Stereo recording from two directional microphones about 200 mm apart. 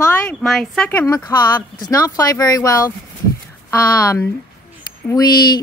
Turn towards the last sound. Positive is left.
turn(degrees=20)  # may be behind; listen again after turning